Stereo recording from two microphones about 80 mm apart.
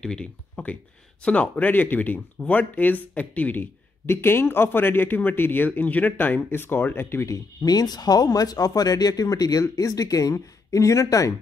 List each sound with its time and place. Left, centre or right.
0.0 s a man's voice: centre; by 7.2 s left
7.2 s speech: left